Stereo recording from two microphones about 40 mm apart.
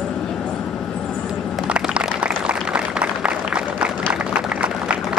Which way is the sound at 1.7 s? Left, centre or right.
Right.